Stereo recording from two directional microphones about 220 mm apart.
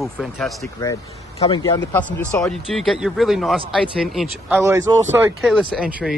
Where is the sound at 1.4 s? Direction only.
20° left (ahead or behind).